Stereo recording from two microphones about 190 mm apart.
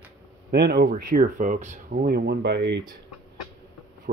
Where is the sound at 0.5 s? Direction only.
60° right (ahead or behind).